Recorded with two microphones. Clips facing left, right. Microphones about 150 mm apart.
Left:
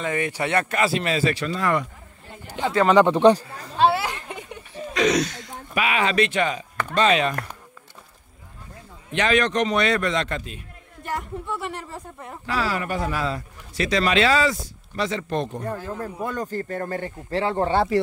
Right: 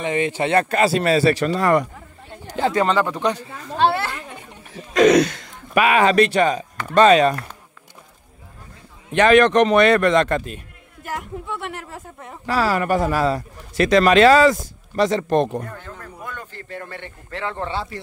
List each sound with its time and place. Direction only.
0.0 s speech: 25° right (ahead or behind); by 1.9 s 40° right (ahead or behind)
2.9 s speech: 20° left (ahead or behind)
3.7 s a sound: 5° left (ahead or behind)
4.9 s speech: 55° right (ahead or behind); by 7.3 s 40° right (ahead or behind)
9.1 s a man's voice: 55° right (ahead or behind)
11.0 s speech: centre (ahead or behind)
12.4 s speech: 40° right (ahead or behind)
15.7 s speech: 35° left (ahead or behind)